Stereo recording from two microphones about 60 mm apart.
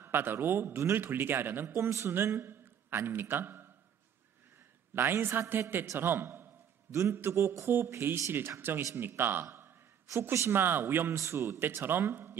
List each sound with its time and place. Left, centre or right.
0.0 s a man's voice: right
1.8 s a man's voice: right
4.9 s a man's voice: right